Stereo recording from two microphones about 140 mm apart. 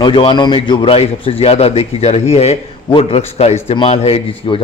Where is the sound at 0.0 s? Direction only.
35° left (ahead or behind).